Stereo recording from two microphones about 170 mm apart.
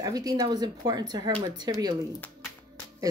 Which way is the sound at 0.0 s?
20° right (ahead or behind).